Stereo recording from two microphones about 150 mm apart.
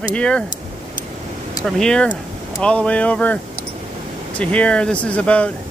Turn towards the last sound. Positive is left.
turn(degrees=10)  # may be behind; listen again after turning